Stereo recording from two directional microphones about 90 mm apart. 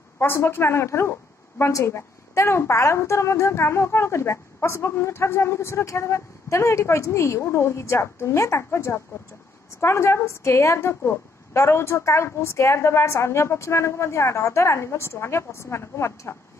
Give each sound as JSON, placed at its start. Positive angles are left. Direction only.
{"t": 0.2, "sound": "a woman's voice", "side_deg": 30}